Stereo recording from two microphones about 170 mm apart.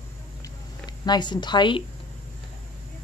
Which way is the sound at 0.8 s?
25° left (ahead or behind).